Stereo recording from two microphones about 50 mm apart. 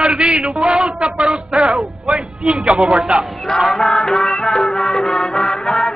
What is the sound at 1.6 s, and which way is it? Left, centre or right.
Music, centre.